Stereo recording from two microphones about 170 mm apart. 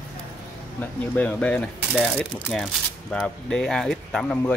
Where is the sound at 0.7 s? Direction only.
10° left (ahead or behind).